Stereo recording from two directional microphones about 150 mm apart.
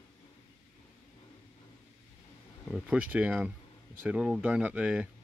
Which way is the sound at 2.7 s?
Centre (ahead or behind).